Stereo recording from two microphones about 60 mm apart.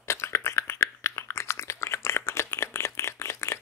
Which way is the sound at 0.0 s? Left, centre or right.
Left.